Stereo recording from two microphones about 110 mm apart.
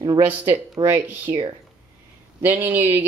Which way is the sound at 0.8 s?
20° right (ahead or behind).